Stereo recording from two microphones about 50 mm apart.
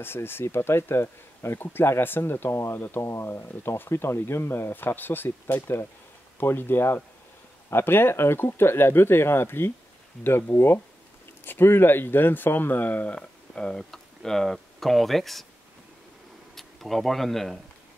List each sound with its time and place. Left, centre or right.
0.0 s speech: left
3.0 s speech: left
3.4 s speech: left
13.1 s speech: centre
16.5 s speech: centre